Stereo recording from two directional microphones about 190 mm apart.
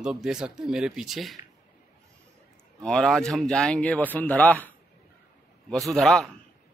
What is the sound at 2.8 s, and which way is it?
Speech, 5° left (ahead or behind).